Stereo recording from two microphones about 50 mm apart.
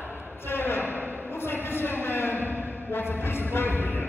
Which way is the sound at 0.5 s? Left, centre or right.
Left.